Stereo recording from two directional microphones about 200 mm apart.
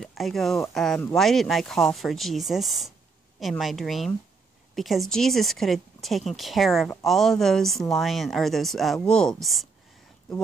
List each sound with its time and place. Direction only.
0.0 s speech: centre (ahead or behind)